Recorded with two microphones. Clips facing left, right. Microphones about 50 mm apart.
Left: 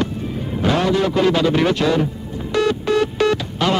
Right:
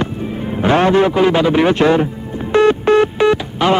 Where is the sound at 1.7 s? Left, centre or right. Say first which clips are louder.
Right 5 dB; right.